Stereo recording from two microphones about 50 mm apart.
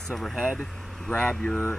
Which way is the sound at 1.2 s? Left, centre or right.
Centre.